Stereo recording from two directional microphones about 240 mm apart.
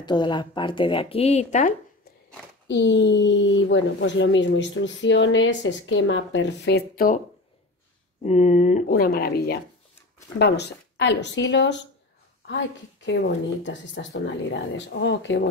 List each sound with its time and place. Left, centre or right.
0.0 s speech: centre
2.7 s speech: left
8.2 s speech: left